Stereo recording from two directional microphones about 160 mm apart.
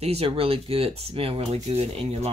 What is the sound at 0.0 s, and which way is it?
Speech, 40° right (ahead or behind).